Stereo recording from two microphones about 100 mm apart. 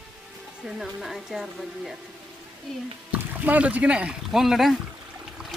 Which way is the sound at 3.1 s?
15° right (ahead or behind).